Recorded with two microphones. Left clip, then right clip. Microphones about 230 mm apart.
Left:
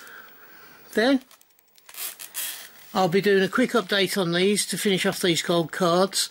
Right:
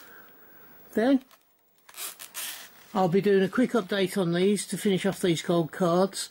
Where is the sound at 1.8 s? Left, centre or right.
Centre.